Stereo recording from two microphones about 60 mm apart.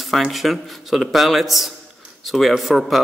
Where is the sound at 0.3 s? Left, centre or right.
Centre.